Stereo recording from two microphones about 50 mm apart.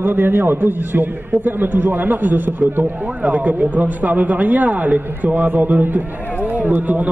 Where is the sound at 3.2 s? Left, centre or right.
Right.